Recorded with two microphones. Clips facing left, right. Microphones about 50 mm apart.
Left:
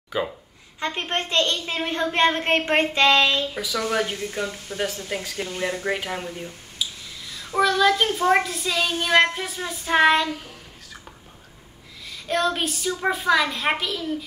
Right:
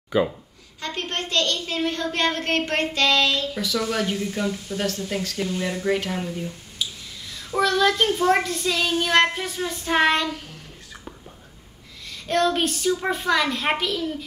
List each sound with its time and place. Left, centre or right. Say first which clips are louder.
0.7 s a woman's voice: left 3 dB; left
3.6 s speech: right 1 dB; centre
5.5 s a woman's voice: even; left
5.9 s speech: right 3 dB; centre
6.8 s a sound: even; centre
7.3 s child singing: left 1 dB; centre
12.1 s child singing: right 2 dB; centre